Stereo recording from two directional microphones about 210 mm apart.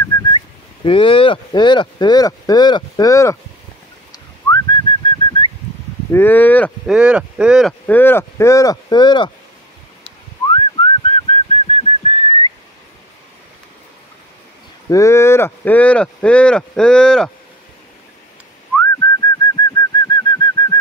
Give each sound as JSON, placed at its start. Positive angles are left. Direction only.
{"t": 0.1, "sound": "whistling", "side_deg": 20}
{"t": 0.8, "sound": "speech", "side_deg": 25}
{"t": 4.1, "sound": "whistling", "side_deg": 20}
{"t": 6.1, "sound": "speech", "side_deg": 10}
{"t": 7.0, "sound": "speech", "side_deg": -5}
{"t": 7.8, "sound": "speech", "side_deg": 10}
{"t": 10.5, "sound": "whistling", "side_deg": 25}
{"t": 14.9, "sound": "speech", "side_deg": 15}
{"t": 18.7, "sound": "whistling", "side_deg": 5}
{"t": 19.4, "sound": "bird", "side_deg": 20}